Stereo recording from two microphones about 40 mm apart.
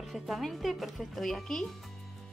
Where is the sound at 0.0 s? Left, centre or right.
Centre.